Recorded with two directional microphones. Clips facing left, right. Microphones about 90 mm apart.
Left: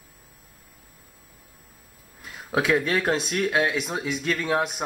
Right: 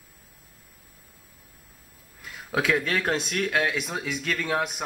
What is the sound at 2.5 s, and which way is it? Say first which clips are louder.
Speech: left 2 dB; 20° left (ahead or behind).